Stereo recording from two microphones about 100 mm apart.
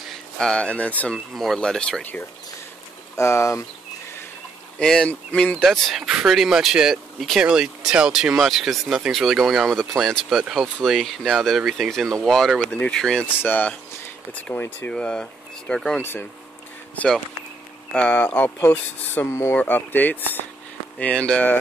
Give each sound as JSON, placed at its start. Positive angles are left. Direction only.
{"t": 0.1, "sound": "speech", "side_deg": 10}
{"t": 1.1, "sound": "speech", "side_deg": 0}
{"t": 3.2, "sound": "speech", "side_deg": 30}
{"t": 4.7, "sound": "speech", "side_deg": 10}
{"t": 5.7, "sound": "speech", "side_deg": 0}
{"t": 13.4, "sound": "speech", "side_deg": 15}
{"t": 16.0, "sound": "speech", "side_deg": 25}
{"t": 16.9, "sound": "speech", "side_deg": 15}